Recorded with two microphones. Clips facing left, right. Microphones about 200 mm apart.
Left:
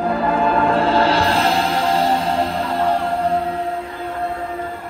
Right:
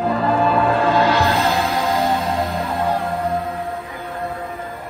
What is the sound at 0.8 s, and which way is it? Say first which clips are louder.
Music: even; 30° left (ahead or behind).